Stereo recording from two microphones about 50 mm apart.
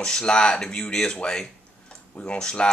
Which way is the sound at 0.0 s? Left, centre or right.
Centre.